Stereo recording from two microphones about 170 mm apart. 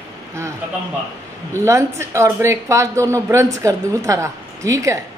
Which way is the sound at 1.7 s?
15° right (ahead or behind).